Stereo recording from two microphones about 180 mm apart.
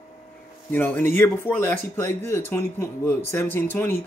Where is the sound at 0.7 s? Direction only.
10° left (ahead or behind).